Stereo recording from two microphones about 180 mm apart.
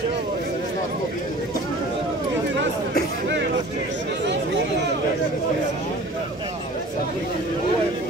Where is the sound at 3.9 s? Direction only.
80° right.